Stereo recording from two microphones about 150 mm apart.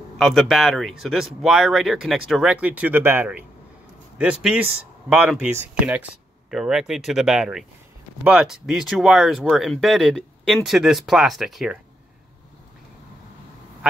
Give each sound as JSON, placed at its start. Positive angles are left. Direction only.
{"t": 0.2, "sound": "speech", "side_deg": 0}